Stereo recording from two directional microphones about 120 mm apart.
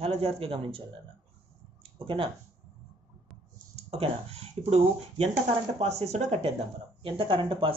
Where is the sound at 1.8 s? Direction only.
50° right (ahead or behind).